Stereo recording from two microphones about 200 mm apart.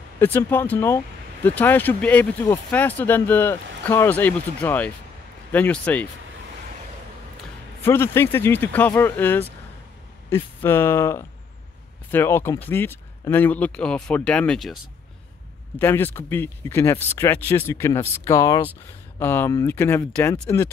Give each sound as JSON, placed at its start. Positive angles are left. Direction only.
{"t": 0.2, "sound": "speech", "side_deg": 10}
{"t": 7.8, "sound": "speech", "side_deg": 10}
{"t": 15.8, "sound": "speech", "side_deg": 10}